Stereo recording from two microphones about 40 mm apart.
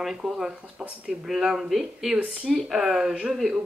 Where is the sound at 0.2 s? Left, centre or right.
Right.